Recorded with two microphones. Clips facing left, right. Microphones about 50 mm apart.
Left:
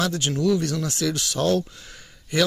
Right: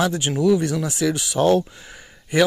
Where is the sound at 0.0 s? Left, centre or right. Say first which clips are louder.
Right 3 dB; centre.